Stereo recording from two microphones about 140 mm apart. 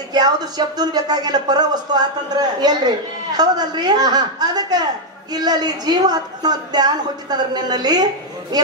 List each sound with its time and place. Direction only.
0.1 s a woman's voice: 30° right (ahead or behind)